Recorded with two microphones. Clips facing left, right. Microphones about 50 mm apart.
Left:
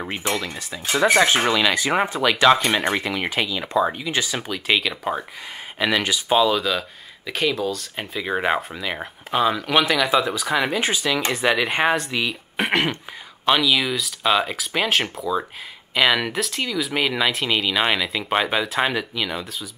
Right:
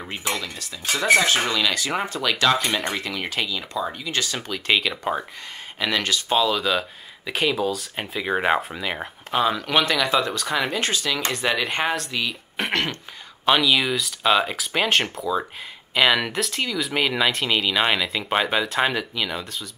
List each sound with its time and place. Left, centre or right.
0.2 s speech: centre
3.6 s speech: left
4.0 s speech: centre
6.7 s speech: centre
13.5 s speech: centre